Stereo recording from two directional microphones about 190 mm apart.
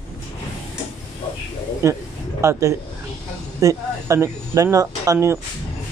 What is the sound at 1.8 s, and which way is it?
Speech, 15° right (ahead or behind).